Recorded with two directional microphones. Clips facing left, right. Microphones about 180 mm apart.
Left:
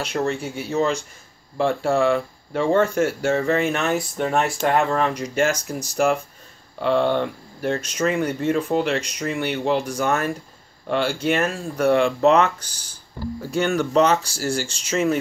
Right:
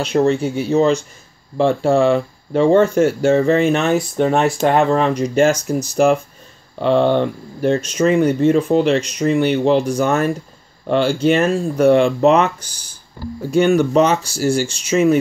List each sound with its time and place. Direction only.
0.0 s speech: 25° right (ahead or behind)